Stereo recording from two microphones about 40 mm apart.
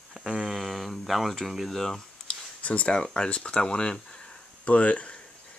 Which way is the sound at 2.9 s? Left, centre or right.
Centre.